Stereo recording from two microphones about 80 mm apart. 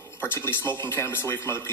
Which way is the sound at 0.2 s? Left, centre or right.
Left.